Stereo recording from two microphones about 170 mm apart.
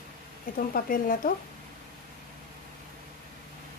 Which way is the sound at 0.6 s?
55° left (ahead or behind).